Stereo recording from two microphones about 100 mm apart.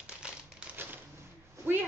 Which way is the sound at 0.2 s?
10° right (ahead or behind).